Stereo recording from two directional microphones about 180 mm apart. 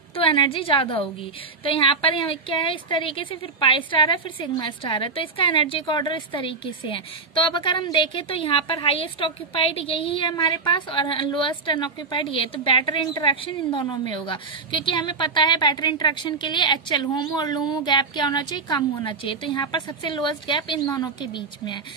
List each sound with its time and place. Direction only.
0.1 s a woman's voice: 30° left (ahead or behind)